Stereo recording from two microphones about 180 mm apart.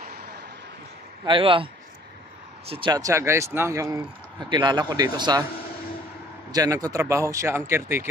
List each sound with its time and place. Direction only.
1.2 s speech: 30° right (ahead or behind)
2.7 s speech: 25° right (ahead or behind)
6.5 s speech: 20° right (ahead or behind)